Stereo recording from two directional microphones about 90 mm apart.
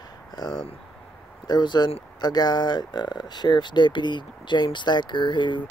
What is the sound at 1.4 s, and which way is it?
Speech, 55° left (ahead or behind).